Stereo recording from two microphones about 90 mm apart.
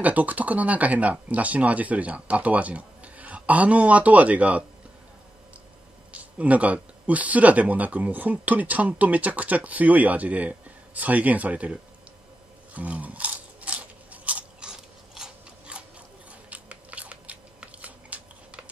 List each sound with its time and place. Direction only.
0.0 s speech: 15° right (ahead or behind)
6.1 s speech: 15° right (ahead or behind)
12.7 s a sound: 15° right (ahead or behind)
16.4 s biting: 15° right (ahead or behind)